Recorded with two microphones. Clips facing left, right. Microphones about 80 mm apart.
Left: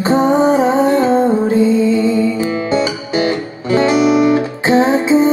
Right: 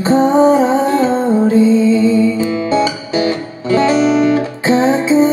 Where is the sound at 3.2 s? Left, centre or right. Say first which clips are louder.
Even; left.